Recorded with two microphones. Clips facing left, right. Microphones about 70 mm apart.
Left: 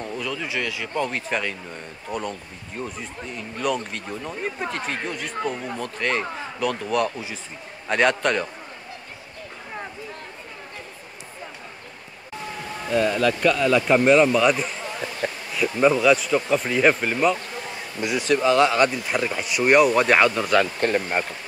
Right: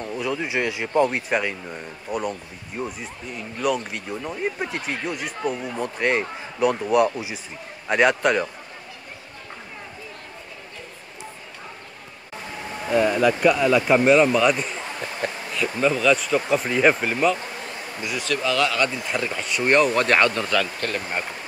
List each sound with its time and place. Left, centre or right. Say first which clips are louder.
0.2 s speech: right 5 dB; right
12.9 s speech: right 2 dB; centre
15.2 s bee: left 1 dB; centre
15.8 s speech: left 3 dB; centre
16.1 s speech: left 1 dB; centre
18.0 s speech: left 5 dB; left
19.1 s speech: left 2 dB; centre
20.8 s speech: left 5 dB; left